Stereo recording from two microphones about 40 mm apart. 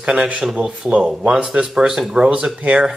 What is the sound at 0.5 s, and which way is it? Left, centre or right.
Speech, centre.